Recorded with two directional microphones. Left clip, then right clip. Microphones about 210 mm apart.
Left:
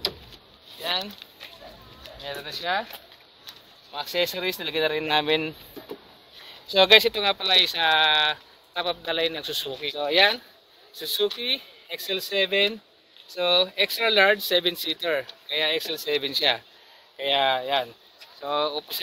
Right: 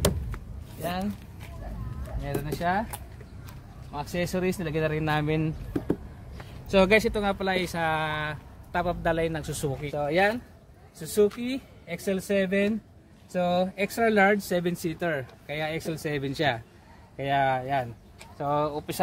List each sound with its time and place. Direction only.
2.2 s speech: 5° left (ahead or behind)
3.9 s speech: 25° left (ahead or behind)
6.7 s speech: 25° left (ahead or behind)
7.3 s speech: 5° left (ahead or behind)
9.9 s speech: 20° left (ahead or behind)
18.5 s speech: 10° left (ahead or behind)